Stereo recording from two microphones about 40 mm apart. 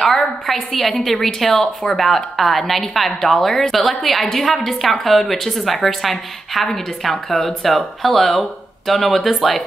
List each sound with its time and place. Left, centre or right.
0.0 s a woman's voice: centre
1.6 s speech: centre
2.0 s a woman's voice: centre